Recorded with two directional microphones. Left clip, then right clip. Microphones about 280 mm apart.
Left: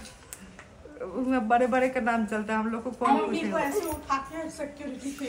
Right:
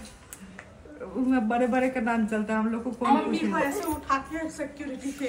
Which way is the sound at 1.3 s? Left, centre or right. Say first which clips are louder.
Left 2 dB; centre.